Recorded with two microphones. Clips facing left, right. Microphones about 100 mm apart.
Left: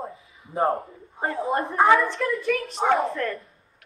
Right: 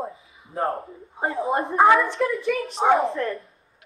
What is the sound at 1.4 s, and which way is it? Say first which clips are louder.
Speech: right 3 dB; 30° right (ahead or behind).